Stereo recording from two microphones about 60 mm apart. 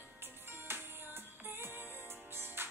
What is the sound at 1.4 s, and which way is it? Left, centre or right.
Music, right.